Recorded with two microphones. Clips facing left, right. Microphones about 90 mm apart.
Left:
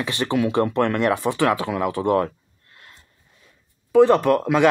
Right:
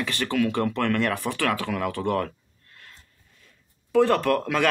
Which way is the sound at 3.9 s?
15° left (ahead or behind).